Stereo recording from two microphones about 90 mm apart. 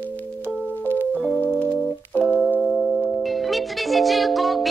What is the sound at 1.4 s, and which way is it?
Music, 20° left (ahead or behind).